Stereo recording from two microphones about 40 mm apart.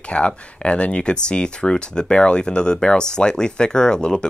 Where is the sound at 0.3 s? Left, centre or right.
Left.